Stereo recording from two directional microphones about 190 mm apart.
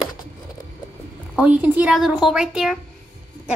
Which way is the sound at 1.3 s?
5° right (ahead or behind).